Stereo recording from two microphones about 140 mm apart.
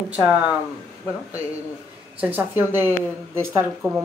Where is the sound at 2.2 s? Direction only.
15° right (ahead or behind).